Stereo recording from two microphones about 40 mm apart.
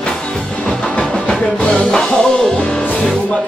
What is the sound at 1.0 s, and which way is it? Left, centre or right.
Music, centre.